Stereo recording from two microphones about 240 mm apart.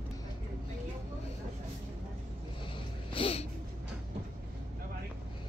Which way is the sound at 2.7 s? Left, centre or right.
Left.